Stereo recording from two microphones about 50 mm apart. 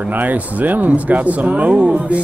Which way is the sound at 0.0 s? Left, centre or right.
Right.